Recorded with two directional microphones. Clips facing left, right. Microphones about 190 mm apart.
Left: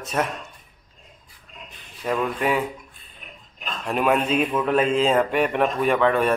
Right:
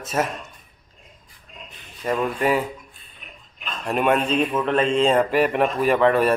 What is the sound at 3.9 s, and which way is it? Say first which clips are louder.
A man's voice: right 1 dB; centre (ahead or behind).